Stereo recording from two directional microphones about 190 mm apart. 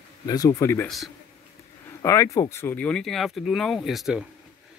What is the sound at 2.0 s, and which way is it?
Speech, 15° left (ahead or behind).